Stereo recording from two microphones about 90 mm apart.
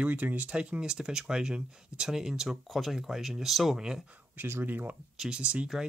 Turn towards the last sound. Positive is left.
turn(degrees=-10)  # may be behind; listen again after turning